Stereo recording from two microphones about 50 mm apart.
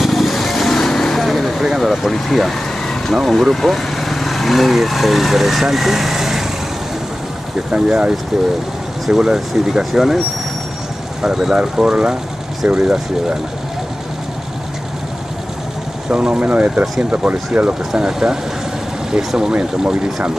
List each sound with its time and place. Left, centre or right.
0.0 s vehicle: centre
1.8 s speech: centre
7.7 s speech: right
9.0 s speech: centre
11.5 s speech: centre
16.1 s speech: right
18.0 s speech: centre